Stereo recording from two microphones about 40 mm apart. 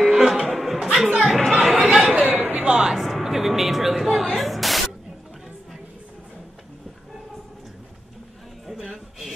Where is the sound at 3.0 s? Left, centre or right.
Centre.